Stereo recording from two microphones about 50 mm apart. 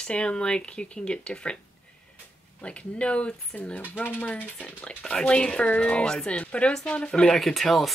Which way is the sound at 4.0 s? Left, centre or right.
Left.